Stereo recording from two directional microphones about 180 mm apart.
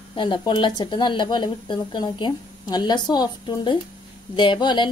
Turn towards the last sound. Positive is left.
turn(degrees=25)  # may be behind; listen again after turning